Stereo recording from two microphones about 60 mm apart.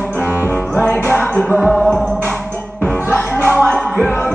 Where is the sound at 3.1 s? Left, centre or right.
Left.